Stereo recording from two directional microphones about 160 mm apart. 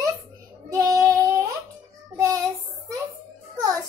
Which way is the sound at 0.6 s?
20° right (ahead or behind).